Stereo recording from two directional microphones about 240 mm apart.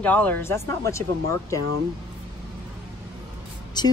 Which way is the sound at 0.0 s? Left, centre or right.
Centre.